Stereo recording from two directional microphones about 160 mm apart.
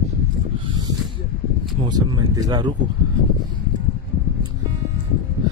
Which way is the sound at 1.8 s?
25° right (ahead or behind).